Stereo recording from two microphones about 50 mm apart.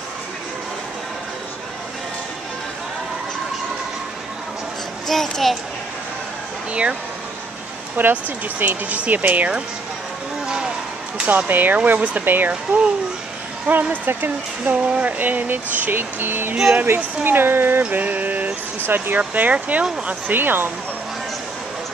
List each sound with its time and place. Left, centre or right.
5.0 s a child's voice: centre
6.7 s speech: right
8.0 s speech: right
10.4 s a sound: centre
11.2 s speech: right
12.3 s speech: right
13.7 s speech: right
14.9 s speech: right
15.1 s speech: right
17.9 s mantra: right
18.9 s speech: right
19.1 s speech: right
20.2 s speech: right